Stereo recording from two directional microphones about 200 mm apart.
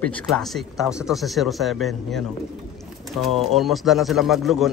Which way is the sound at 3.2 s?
Centre (ahead or behind).